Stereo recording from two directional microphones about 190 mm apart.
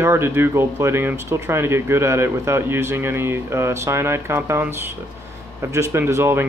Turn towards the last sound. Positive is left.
turn(degrees=-15)  # may be behind; listen again after turning